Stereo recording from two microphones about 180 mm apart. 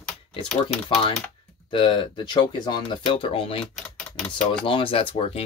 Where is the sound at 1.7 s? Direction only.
25° left (ahead or behind).